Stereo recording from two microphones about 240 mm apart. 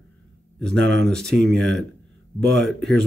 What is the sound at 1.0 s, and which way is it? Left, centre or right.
Speech, centre.